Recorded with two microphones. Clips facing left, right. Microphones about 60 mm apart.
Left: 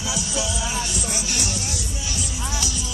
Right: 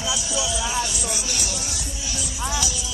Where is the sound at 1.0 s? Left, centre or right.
Left.